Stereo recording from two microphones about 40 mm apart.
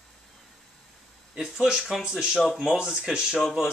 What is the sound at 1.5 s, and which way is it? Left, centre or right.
Speech, centre.